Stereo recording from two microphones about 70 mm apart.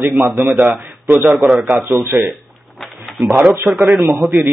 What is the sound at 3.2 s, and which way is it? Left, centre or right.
Speech, centre.